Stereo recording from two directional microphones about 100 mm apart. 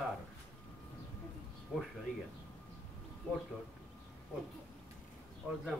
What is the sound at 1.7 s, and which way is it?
Speech, 15° right (ahead or behind).